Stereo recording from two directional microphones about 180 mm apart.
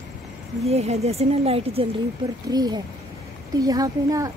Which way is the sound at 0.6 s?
35° right (ahead or behind).